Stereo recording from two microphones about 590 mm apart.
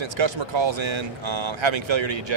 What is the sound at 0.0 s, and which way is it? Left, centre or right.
Speech, right.